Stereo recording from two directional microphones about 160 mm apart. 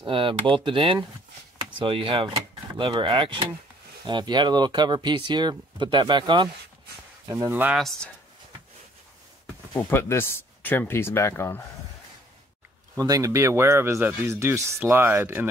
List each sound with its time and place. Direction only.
0.0 s speech: 35° right (ahead or behind)
7.5 s speech: 10° right (ahead or behind)
9.8 s speech: 15° left (ahead or behind)
12.9 s speech: 20° right (ahead or behind)